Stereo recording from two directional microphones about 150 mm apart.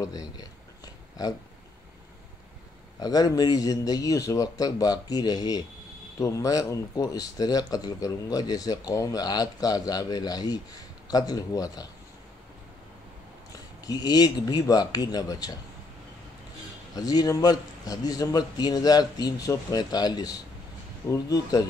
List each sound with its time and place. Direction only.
0.0 s speech: 25° left (ahead or behind)
3.0 s speech: 25° left (ahead or behind)
13.8 s speech: 25° left (ahead or behind)
16.9 s speech: 25° left (ahead or behind)